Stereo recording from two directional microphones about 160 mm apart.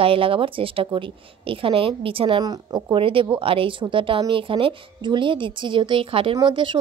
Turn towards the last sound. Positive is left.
turn(degrees=-30)  # may be behind; listen again after turning